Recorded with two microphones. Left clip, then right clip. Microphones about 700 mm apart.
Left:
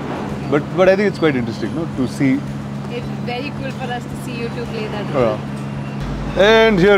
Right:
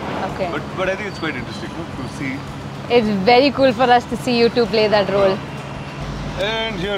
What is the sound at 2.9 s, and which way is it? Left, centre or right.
Speech, right.